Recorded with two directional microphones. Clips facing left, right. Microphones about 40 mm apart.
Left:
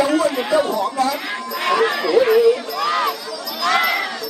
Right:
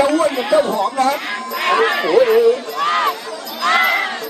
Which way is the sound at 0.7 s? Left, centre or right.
Right.